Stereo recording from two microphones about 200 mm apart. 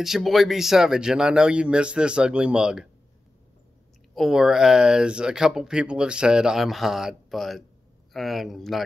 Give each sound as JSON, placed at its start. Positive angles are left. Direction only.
{"t": 0.0, "sound": "speech", "side_deg": 0}
{"t": 4.1, "sound": "speech", "side_deg": 0}